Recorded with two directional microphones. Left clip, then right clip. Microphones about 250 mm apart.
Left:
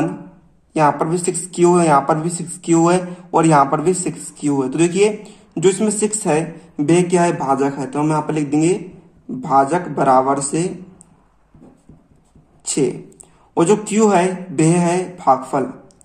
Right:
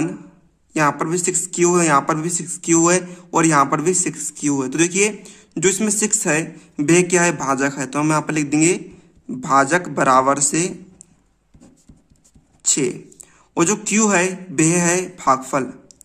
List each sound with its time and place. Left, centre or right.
0.7 s speech: right
12.6 s speech: right